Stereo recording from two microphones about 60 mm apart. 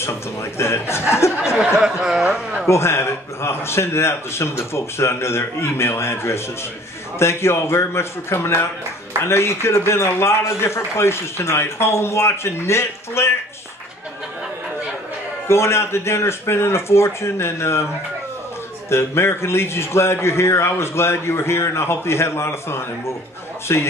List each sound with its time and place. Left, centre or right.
0.6 s a man's voice: left
1.4 s speech: centre
2.7 s a man's voice: left
15.4 s a man's voice: left
18.9 s a man's voice: left